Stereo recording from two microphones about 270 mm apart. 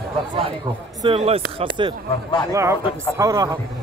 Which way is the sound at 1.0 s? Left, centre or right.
Centre.